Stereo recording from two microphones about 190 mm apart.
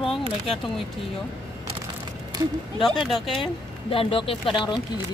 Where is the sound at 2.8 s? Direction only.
Centre (ahead or behind).